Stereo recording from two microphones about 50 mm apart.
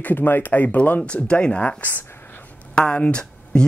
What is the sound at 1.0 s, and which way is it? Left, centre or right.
Speech, left.